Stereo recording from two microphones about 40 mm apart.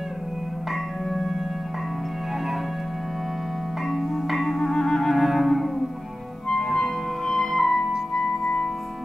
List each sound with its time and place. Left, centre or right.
3.9 s music: centre
4.7 s clarinet: centre
5.1 s music: centre
7.2 s music: centre